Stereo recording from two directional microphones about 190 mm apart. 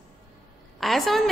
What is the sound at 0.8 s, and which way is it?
Speech, centre (ahead or behind).